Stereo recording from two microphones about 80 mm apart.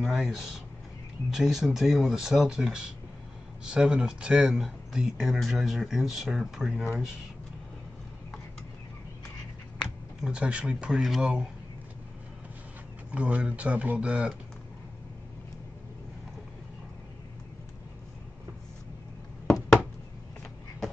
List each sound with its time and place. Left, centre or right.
0.0 s speech: centre
10.2 s speech: centre
13.1 s speech: centre